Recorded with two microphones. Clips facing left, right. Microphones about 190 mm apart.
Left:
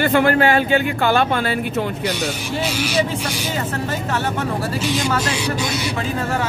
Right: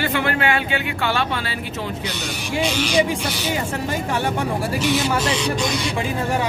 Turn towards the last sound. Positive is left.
turn(degrees=10)  # may be behind; listen again after turning